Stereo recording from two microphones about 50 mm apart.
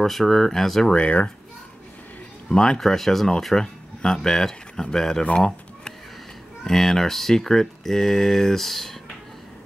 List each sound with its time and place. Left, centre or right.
0.0 s speech: centre
0.9 s speech: left
2.5 s speech: centre
2.8 s speech: centre
6.6 s speech: centre